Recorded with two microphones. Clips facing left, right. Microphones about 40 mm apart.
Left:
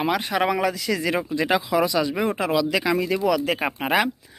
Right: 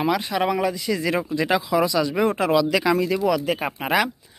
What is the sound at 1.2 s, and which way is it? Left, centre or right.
Speech, centre.